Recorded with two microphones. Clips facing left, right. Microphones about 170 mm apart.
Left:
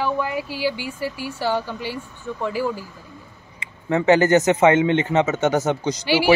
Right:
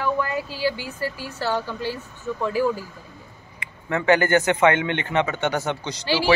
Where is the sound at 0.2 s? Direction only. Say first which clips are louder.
Left 1 dB; 15° left (ahead or behind).